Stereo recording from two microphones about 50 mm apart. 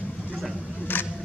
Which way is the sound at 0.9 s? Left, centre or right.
Left.